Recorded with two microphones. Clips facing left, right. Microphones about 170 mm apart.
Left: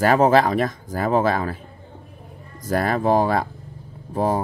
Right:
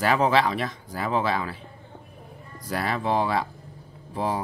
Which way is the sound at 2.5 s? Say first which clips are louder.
Left 6 dB; 45° left (ahead or behind).